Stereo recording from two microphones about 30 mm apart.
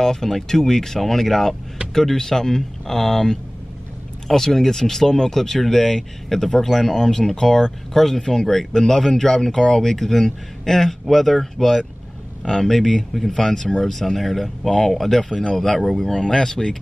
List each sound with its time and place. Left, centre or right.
0.0 s speech: centre
13.9 s speech: centre